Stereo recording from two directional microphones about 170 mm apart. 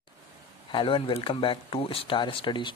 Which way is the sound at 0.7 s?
30° left (ahead or behind).